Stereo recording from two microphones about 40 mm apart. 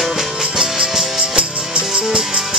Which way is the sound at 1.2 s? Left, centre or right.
Right.